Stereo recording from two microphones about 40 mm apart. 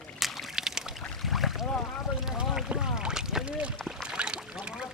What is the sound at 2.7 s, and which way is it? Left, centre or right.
Boat, right.